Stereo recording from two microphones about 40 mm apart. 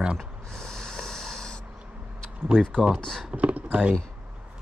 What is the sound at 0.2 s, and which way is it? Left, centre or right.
Snort, centre.